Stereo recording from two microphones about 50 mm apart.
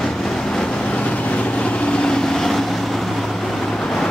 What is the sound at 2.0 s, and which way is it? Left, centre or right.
Vehicle, centre.